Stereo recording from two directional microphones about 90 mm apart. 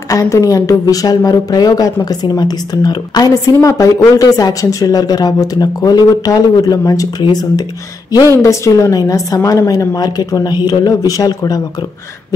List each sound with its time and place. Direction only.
0.1 s a woman's voice: 40° left (ahead or behind)
8.4 s a woman's voice: 35° left (ahead or behind)